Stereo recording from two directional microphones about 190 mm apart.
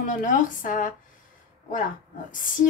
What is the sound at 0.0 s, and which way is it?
Speech, 45° left (ahead or behind).